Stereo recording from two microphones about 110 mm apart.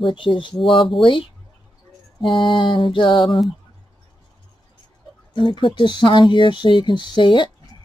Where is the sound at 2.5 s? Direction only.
50° left (ahead or behind).